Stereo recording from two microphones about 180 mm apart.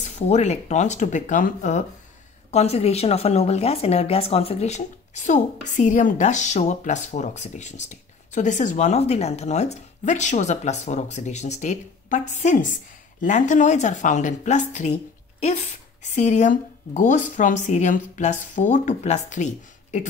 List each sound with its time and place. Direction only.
0.0 s a woman's voice: 40° left (ahead or behind)